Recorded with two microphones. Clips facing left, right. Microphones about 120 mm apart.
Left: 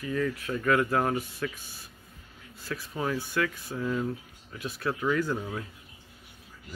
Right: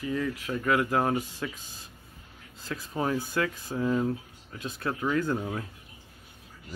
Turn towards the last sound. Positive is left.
turn(degrees=-15)  # may be behind; listen again after turning